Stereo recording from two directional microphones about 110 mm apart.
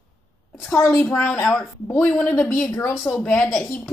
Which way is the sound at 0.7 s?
25° left (ahead or behind).